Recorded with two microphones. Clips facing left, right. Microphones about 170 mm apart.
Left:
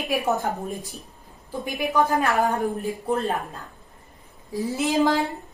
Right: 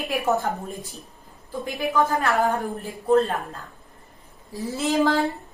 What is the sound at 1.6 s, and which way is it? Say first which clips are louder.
A woman's voice: even; 15° left (ahead or behind).